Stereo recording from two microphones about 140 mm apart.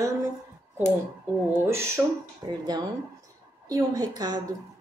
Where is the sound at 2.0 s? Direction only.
15° right (ahead or behind).